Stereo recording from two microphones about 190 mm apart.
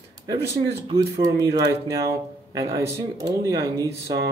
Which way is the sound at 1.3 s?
15° right (ahead or behind).